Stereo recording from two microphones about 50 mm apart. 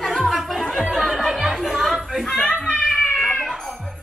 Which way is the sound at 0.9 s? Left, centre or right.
Centre.